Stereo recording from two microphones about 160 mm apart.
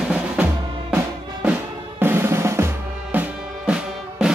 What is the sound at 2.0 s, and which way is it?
Drum, 15° right (ahead or behind).